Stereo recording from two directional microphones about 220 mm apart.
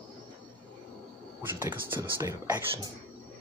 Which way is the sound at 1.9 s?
10° right (ahead or behind).